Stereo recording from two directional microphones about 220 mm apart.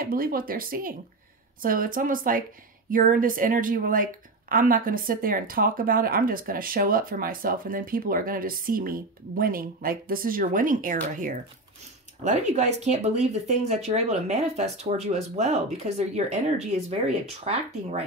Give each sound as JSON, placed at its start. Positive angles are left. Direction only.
{"t": 0.0, "sound": "a woman's voice", "side_deg": -40}